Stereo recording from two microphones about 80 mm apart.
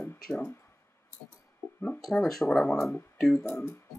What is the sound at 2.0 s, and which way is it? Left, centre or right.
Speech, centre.